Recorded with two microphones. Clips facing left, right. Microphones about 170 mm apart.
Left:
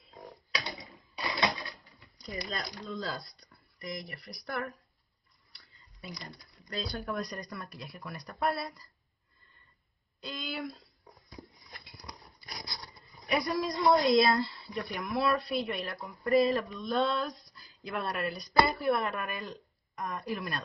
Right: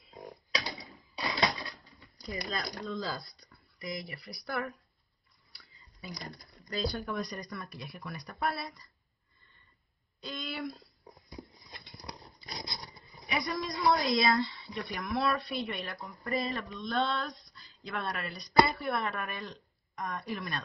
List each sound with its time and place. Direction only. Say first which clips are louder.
2.1 s a woman's voice: right 1 dB; centre (ahead or behind)
5.5 s a sound: right 2 dB; centre (ahead or behind)
6.7 s a woman's voice: right 2 dB; centre (ahead or behind)
10.2 s a woman's voice: even; centre (ahead or behind)
11.1 s walk: right 2 dB; 20° right (ahead or behind)
11.8 s dog: right 3 dB; 5° left (ahead or behind)
12.4 s wild animals: right 2 dB; 25° right (ahead or behind)
13.3 s a woman's voice: left 4 dB; centre (ahead or behind)